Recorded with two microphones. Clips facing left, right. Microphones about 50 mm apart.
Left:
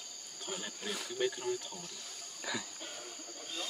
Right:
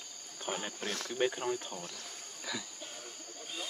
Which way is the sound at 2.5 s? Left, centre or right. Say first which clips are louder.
Left 1 dB; centre.